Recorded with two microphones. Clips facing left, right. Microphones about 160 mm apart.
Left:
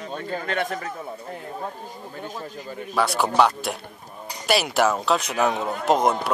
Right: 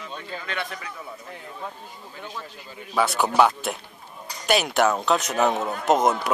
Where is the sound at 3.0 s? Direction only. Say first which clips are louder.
Even; centre (ahead or behind).